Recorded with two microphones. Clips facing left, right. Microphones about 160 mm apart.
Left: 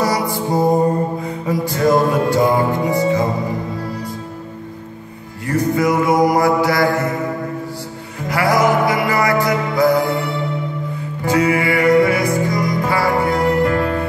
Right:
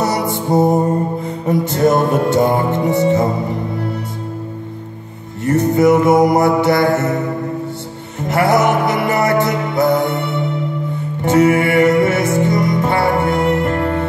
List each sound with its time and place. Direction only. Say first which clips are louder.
0.0 s music: right 1 dB; 25° right (ahead or behind)
1.6 s mantra: even; 25° right (ahead or behind)
5.5 s mantra: right 5 dB; 25° right (ahead or behind)
8.2 s music: right 2 dB; 25° right (ahead or behind)
11.2 s music: right 4 dB; 25° right (ahead or behind)